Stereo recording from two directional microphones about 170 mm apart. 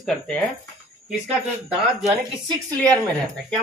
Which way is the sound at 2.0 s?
25° right (ahead or behind).